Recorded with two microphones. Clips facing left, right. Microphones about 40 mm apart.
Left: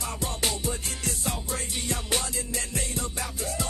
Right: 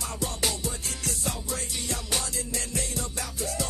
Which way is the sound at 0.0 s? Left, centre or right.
Left.